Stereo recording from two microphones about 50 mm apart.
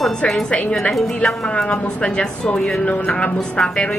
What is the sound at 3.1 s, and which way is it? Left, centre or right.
Speech, centre.